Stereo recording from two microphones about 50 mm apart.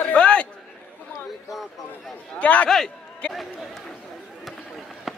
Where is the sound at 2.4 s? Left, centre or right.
Left.